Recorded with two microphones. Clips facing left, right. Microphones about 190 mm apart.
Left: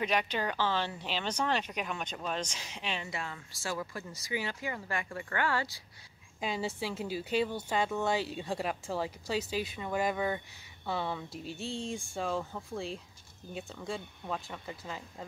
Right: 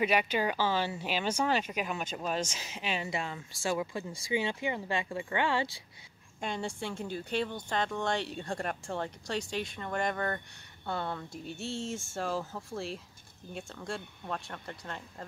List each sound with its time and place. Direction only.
0.0 s speech: 10° right (ahead or behind)
3.1 s speech: 20° right (ahead or behind)
6.4 s speech: 5° left (ahead or behind)